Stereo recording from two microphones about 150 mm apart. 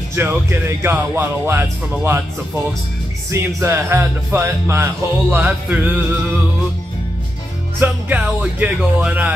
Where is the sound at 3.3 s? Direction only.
20° right (ahead or behind).